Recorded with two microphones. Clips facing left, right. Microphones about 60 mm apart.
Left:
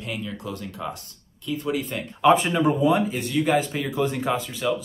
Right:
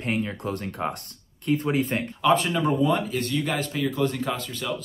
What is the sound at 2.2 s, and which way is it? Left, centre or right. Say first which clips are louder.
Speech: left 4 dB; centre.